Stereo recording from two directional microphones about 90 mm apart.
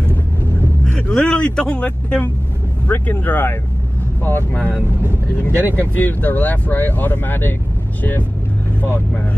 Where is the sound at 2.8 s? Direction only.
20° left (ahead or behind).